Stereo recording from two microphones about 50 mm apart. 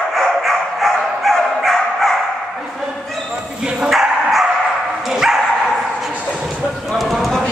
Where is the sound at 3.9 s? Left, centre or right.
Centre.